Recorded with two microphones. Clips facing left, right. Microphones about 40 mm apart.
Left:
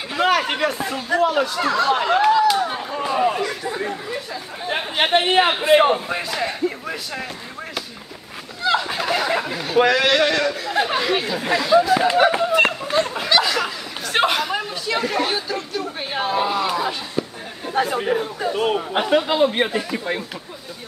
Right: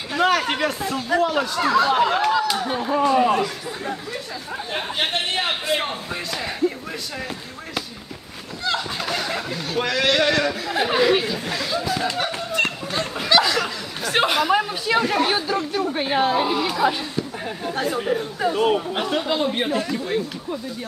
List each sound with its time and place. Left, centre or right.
0.1 s speech: centre
3.6 s speech: centre
4.6 s chatter: left
5.6 s speech: left
6.3 s speech: centre
8.6 s speech: centre
11.9 s speech: left
12.9 s chatter: centre
14.5 s speech: centre
18.4 s speech: centre
18.9 s speech: centre